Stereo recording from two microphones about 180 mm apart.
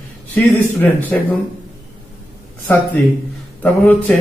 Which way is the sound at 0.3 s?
10° left (ahead or behind).